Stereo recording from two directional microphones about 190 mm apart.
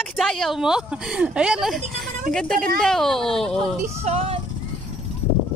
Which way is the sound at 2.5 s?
50° right (ahead or behind).